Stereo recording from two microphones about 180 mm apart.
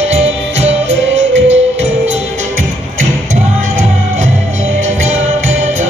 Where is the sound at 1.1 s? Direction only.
90° right.